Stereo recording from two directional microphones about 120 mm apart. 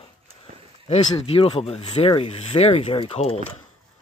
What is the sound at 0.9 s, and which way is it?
Speech, 55° left (ahead or behind).